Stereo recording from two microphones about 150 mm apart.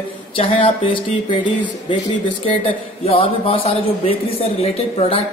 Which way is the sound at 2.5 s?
40° left (ahead or behind).